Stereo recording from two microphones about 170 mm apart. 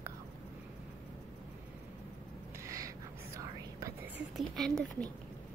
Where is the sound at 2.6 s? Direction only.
20° right (ahead or behind).